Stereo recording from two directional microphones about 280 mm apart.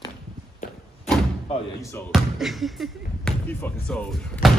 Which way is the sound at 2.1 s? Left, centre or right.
Centre.